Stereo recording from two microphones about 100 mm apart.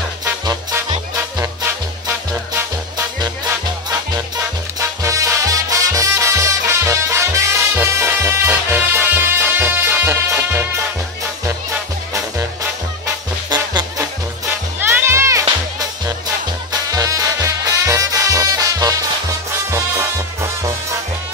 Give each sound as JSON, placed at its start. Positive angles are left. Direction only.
{"t": 3.4, "sound": "music", "side_deg": -35}
{"t": 13.5, "sound": "music", "side_deg": -45}
{"t": 14.8, "sound": "music", "side_deg": -25}
{"t": 16.9, "sound": "music", "side_deg": -35}